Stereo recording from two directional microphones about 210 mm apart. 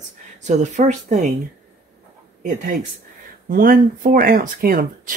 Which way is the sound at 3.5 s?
40° right (ahead or behind).